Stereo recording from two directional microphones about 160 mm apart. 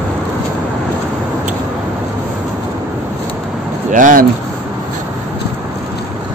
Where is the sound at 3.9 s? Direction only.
55° right (ahead or behind).